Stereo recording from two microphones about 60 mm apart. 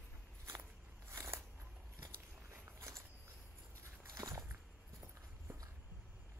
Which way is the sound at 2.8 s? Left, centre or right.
Right.